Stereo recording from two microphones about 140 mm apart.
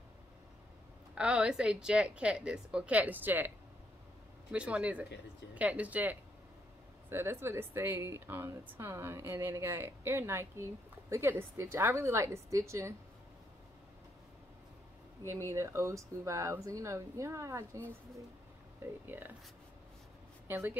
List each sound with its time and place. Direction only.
1.1 s a woman's voice: 5° right (ahead or behind)
15.2 s a woman's voice: 20° right (ahead or behind)
20.4 s speech: 15° right (ahead or behind)